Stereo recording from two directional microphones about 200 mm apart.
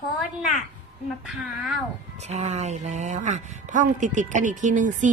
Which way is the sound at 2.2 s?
35° right (ahead or behind).